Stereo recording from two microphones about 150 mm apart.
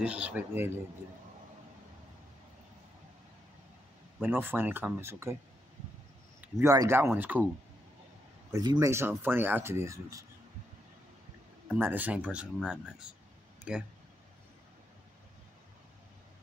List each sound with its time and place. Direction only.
0.0 s speech: 10° right (ahead or behind)
4.2 s speech: 15° right (ahead or behind)
6.4 s speech: 20° right (ahead or behind)
8.5 s speech: 25° right (ahead or behind)
11.7 s speech: 10° right (ahead or behind)
13.7 s speech: 5° right (ahead or behind)